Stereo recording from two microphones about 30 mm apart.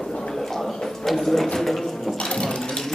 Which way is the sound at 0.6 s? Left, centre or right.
Centre.